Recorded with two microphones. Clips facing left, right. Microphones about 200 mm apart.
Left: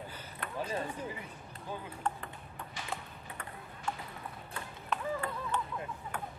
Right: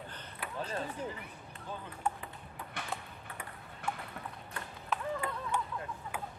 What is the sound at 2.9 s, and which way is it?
Ping, 5° right (ahead or behind).